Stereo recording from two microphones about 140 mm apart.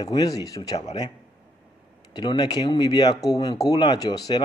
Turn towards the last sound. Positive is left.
turn(degrees=30)  # may be behind; listen again after turning